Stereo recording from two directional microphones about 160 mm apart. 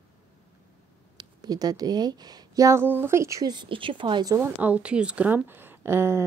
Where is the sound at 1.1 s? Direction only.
25° right (ahead or behind).